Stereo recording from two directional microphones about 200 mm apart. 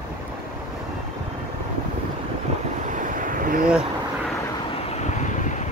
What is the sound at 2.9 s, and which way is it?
Vehicle, 40° right (ahead or behind).